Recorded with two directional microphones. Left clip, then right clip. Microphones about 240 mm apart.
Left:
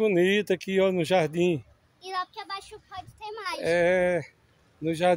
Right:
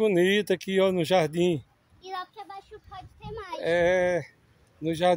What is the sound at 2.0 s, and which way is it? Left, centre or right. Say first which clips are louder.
A child's voice: left 4 dB; left.